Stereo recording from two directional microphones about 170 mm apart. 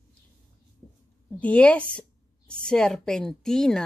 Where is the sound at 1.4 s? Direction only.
5° left (ahead or behind).